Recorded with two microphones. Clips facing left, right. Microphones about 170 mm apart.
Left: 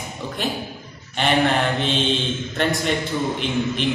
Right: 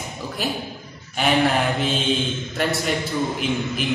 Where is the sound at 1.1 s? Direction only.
5° right (ahead or behind).